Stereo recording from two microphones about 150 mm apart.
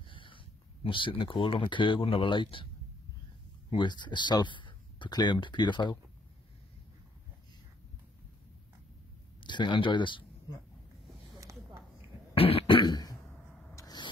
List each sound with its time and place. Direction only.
0.1 s a sound: 35° left (ahead or behind)
0.8 s speech: 35° left (ahead or behind)
3.7 s speech: 30° left (ahead or behind)
9.5 s speech: 30° left (ahead or behind)
11.3 s a sound: 25° right (ahead or behind)
12.4 s throat clearing: 40° left (ahead or behind)
13.7 s vehicle: 25° left (ahead or behind)